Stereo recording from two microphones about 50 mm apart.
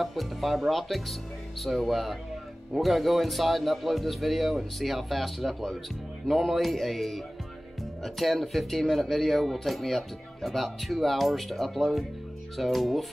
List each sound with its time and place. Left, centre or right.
0.0 s speech: centre